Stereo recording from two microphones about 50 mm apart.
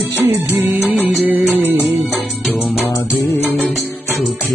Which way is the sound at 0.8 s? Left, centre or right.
Right.